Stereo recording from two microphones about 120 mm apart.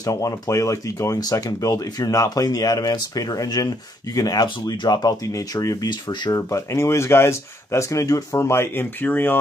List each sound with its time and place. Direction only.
0.0 s speech: 25° left (ahead or behind)